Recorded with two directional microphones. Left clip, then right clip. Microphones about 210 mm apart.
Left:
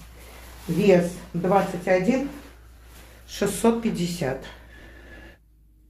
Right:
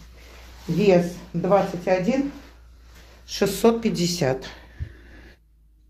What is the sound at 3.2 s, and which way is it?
Speech, 50° right (ahead or behind).